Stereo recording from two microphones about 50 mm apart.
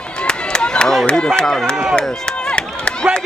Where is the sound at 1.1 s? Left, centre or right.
Centre.